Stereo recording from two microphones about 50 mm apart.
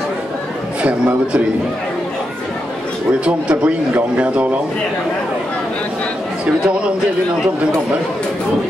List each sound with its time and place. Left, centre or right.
0.8 s speech: right
3.1 s speech: centre